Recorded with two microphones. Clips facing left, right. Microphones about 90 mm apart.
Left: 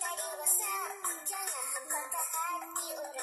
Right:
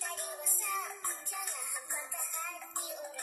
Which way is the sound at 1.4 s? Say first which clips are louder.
Left 3 dB; 65° left (ahead or behind).